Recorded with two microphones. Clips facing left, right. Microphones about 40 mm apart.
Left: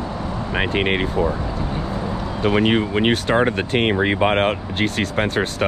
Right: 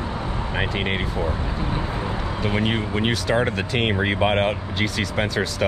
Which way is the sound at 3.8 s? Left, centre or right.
Left.